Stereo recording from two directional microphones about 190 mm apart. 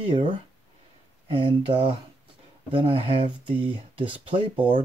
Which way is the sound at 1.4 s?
30° right (ahead or behind).